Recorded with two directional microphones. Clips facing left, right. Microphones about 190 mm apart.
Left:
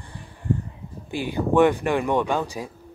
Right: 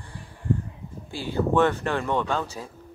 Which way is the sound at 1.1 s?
15° left (ahead or behind).